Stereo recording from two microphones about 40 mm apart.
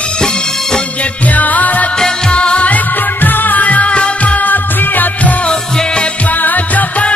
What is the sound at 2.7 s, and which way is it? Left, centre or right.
Music, left.